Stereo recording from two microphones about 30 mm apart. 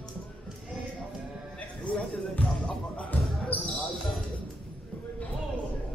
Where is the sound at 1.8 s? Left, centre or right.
Left.